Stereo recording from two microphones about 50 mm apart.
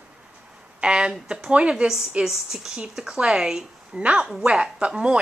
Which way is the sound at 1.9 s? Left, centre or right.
Centre.